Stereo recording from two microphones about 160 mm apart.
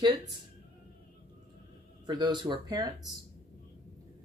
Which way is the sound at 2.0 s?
25° right (ahead or behind).